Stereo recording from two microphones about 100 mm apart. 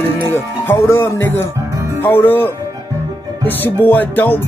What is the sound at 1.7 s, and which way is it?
Music, 25° right (ahead or behind).